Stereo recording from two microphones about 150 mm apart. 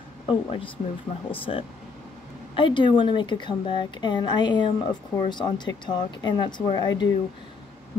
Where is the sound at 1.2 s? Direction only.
35° left (ahead or behind).